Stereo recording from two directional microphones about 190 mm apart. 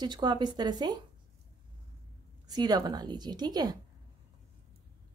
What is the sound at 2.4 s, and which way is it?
Speech, 20° right (ahead or behind).